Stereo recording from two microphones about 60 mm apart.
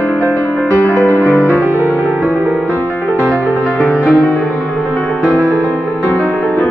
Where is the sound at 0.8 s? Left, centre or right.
Left.